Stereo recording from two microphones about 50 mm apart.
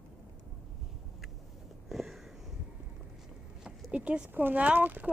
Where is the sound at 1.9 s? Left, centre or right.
Centre.